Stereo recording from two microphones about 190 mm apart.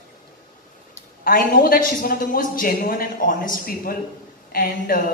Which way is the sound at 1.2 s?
50° left (ahead or behind).